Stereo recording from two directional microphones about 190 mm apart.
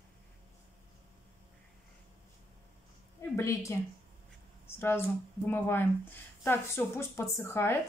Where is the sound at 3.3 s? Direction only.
15° left (ahead or behind).